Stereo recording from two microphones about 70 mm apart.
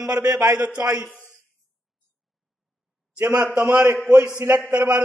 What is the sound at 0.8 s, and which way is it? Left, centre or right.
Speech, right.